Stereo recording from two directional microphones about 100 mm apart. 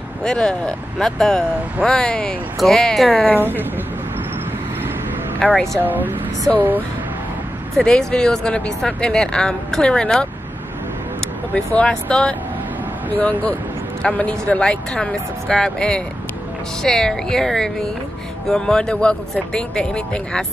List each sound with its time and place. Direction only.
0.2 s speech: 5° left (ahead or behind)
3.3 s speech: 20° right (ahead or behind)
5.4 s speech: 5° left (ahead or behind)
5.8 s speech: 20° right (ahead or behind)
7.7 s speech: 5° left (ahead or behind)
11.5 s speech: 15° left (ahead or behind)